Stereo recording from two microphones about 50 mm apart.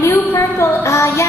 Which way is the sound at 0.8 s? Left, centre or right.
Left.